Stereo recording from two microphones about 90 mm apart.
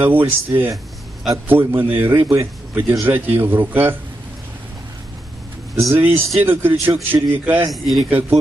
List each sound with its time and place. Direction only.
0.0 s a man's voice: 20° right (ahead or behind)
5.9 s a man's voice: 25° right (ahead or behind)
7.7 s a man's voice: centre (ahead or behind)
8.1 s a man's voice: 20° right (ahead or behind)